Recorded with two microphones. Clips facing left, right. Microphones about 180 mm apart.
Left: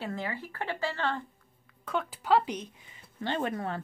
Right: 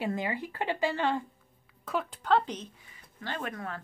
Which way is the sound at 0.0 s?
15° right (ahead or behind).